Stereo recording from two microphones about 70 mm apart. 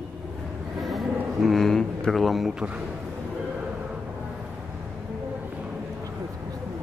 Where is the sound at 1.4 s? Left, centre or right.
Centre.